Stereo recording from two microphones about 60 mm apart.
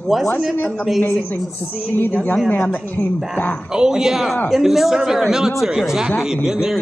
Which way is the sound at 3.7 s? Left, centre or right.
Centre.